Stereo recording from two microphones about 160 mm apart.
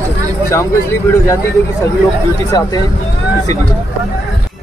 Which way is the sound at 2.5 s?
25° left (ahead or behind).